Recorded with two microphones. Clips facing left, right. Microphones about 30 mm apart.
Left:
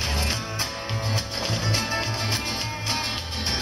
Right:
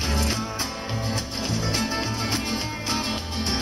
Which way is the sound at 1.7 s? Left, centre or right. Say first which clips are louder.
Even; centre.